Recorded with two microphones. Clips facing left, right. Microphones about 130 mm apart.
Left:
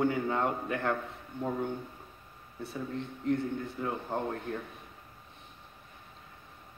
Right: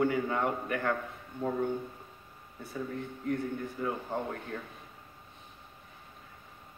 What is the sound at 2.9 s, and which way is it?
A man's voice, 25° left (ahead or behind).